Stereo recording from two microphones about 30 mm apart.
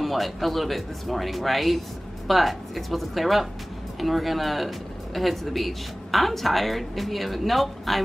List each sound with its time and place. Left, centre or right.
0.0 s speech: centre